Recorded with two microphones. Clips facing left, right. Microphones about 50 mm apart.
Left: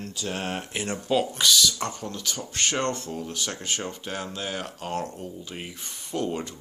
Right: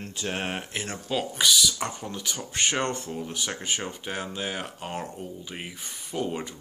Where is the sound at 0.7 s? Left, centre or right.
Centre.